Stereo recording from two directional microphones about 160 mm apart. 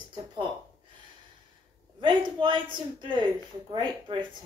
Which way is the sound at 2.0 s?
30° right (ahead or behind).